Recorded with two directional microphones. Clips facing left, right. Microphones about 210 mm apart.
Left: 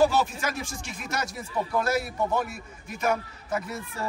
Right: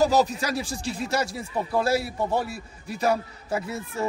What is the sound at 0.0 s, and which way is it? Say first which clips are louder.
A man's voice: right 2 dB; 40° right (ahead or behind).